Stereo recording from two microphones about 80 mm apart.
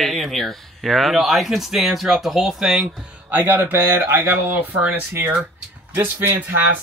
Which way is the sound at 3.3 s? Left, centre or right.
Right.